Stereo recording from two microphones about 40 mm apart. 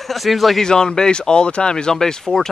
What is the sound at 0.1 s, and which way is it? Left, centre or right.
Speech, centre.